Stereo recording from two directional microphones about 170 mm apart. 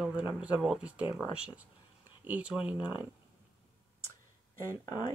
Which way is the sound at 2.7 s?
25° left (ahead or behind).